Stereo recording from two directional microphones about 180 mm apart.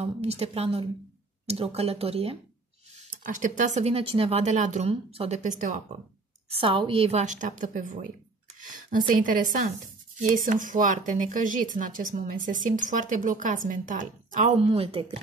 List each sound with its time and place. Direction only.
0.0 s speech: 35° right (ahead or behind)
3.0 s speech: 45° right (ahead or behind)
6.5 s speech: 30° right (ahead or behind); by 8.1 s 45° right (ahead or behind)
9.2 s speech: 50° right (ahead or behind)
14.6 s speech: 30° right (ahead or behind)